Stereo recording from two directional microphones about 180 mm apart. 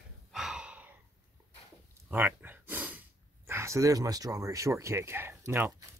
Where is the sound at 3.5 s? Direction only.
15° right (ahead or behind).